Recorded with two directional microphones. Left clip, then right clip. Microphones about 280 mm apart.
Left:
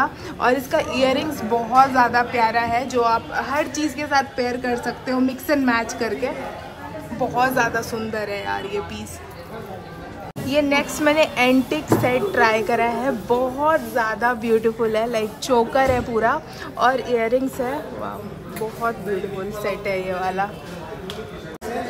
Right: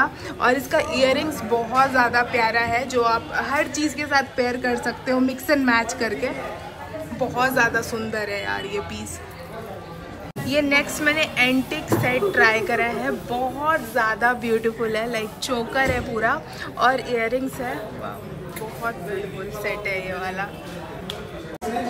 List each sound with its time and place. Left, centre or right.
0.0 s a woman's voice: centre
10.5 s a woman's voice: centre
19.6 s a woman's voice: centre